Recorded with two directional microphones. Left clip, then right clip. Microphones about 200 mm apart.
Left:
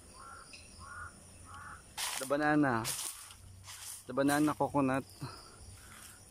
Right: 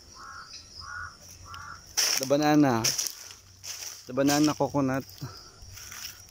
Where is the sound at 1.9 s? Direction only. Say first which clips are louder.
Right 12 dB; 60° right (ahead or behind).